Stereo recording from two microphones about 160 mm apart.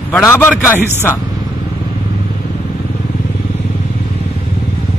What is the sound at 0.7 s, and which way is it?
Speech, 15° right (ahead or behind).